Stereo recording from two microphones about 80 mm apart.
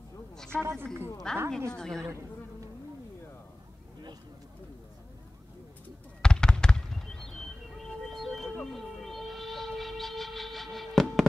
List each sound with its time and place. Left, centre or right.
0.5 s speech: right
1.3 s a woman's voice: centre
2.0 s insect: right
6.2 s fireworks: centre
8.7 s music: centre